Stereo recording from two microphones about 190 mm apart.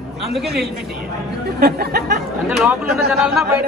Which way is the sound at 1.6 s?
55° right (ahead or behind).